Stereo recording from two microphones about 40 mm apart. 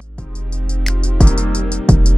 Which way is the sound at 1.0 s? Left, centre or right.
Left.